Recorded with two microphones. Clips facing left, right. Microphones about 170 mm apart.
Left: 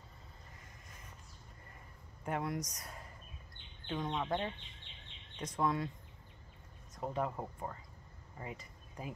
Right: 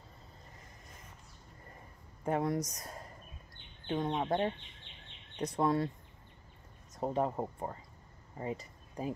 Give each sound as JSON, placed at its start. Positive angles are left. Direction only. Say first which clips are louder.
{"t": 2.2, "sound": "speech", "louder": "right 6 dB", "side_deg": -35}
{"t": 7.0, "sound": "speech", "louder": "right 5 dB", "side_deg": -35}